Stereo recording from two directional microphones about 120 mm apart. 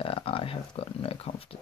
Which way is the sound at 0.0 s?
50° left (ahead or behind).